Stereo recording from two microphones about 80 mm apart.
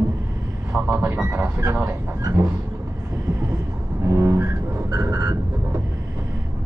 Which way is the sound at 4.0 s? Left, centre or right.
Right.